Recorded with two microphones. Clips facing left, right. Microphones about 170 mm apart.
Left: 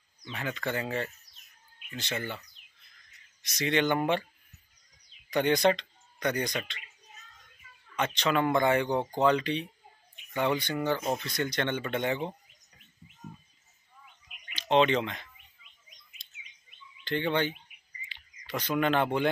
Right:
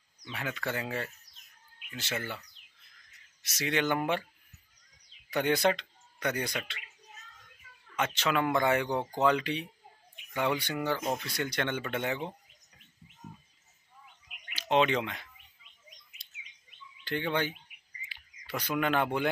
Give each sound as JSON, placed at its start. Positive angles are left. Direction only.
{"t": 0.2, "sound": "speech", "side_deg": -5}
{"t": 3.4, "sound": "speech", "side_deg": -5}
{"t": 5.3, "sound": "a man's voice", "side_deg": -5}
{"t": 7.9, "sound": "speech", "side_deg": -5}
{"t": 14.5, "sound": "speech", "side_deg": -5}
{"t": 17.0, "sound": "speech", "side_deg": -5}
{"t": 18.0, "sound": "a sound", "side_deg": -5}